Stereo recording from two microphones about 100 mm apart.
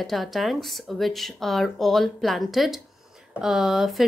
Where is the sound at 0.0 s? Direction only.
Centre (ahead or behind).